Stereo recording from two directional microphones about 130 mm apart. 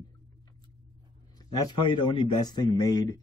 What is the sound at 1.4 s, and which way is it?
A man's voice, 30° left (ahead or behind).